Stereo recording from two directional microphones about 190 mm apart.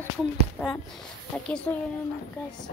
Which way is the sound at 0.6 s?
5° left (ahead or behind).